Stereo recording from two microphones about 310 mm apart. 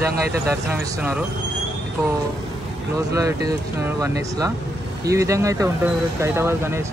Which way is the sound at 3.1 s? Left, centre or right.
Centre.